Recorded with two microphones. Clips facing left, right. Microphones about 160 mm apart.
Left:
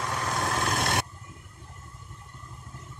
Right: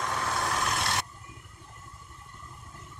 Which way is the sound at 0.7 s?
55° left (ahead or behind).